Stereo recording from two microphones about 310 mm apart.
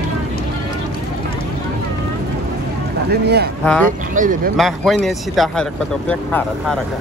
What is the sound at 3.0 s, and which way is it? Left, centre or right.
Speech, right.